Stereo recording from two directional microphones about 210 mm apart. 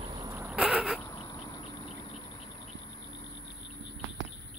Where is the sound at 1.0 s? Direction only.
20° left (ahead or behind).